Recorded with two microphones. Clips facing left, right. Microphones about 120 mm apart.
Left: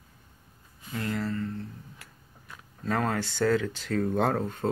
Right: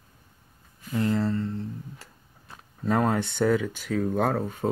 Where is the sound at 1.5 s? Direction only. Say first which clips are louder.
Right 5 dB; 30° right (ahead or behind).